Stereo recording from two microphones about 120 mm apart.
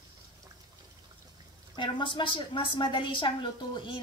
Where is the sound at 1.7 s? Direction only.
40° left (ahead or behind).